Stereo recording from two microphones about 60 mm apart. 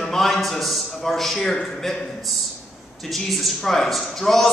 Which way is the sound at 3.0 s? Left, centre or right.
Centre.